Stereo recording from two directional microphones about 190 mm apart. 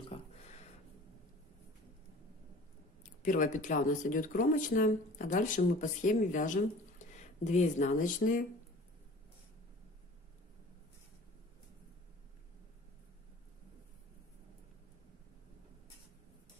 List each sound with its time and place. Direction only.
3.0 s speech: 45° left (ahead or behind)